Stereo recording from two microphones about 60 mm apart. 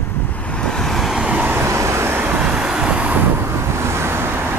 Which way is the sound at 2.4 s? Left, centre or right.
Centre.